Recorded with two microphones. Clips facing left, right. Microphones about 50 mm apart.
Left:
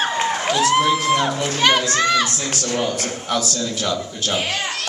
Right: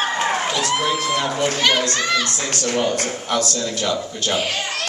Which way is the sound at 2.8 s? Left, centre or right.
Centre.